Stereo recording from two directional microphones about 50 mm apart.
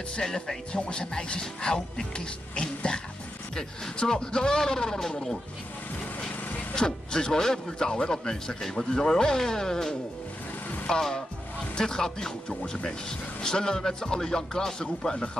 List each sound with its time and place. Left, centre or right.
0.1 s speech: centre
6.7 s speech: centre
13.4 s speech: centre